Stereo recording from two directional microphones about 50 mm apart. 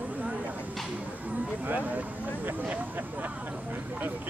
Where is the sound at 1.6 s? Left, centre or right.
Right.